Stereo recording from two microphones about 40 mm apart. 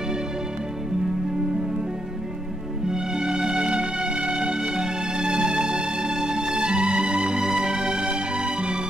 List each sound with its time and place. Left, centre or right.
2.9 s music: centre